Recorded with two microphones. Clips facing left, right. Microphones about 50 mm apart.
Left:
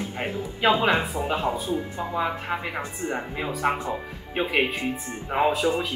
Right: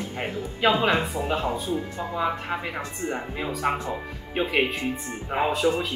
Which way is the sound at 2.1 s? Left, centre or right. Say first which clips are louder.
Even; centre.